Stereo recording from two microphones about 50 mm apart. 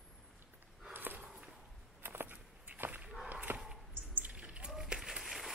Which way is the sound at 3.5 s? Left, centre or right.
Right.